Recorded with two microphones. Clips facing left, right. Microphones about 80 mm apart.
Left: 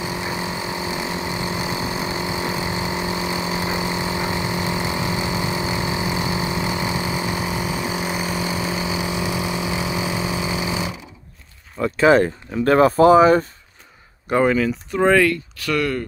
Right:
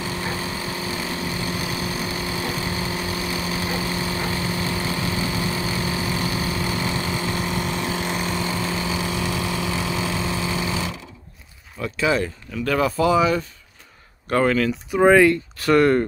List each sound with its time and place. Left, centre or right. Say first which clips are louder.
0.0 s vehicle: left 2 dB; centre
11.8 s speech: left 7 dB; left
14.3 s speech: left 2 dB; centre
14.9 s speech: right 3 dB; centre
15.5 s speech: right 6 dB; right